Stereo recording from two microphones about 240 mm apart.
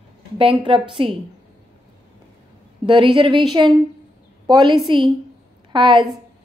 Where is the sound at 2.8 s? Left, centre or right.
Centre.